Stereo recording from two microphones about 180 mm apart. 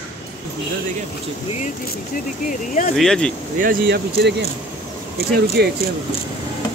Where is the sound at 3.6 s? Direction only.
55° right (ahead or behind).